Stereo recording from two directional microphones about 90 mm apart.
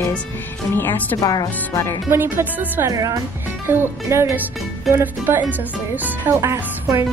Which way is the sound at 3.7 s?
30° right (ahead or behind).